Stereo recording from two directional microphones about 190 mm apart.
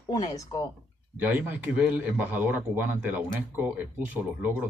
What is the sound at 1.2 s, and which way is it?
Speech, 10° right (ahead or behind).